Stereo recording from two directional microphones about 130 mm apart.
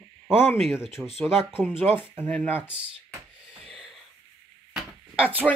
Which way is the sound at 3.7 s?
5° right (ahead or behind).